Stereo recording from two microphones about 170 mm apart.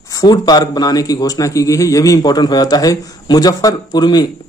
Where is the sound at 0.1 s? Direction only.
25° left (ahead or behind).